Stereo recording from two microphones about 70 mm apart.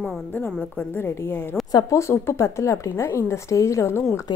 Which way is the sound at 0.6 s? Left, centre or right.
Left.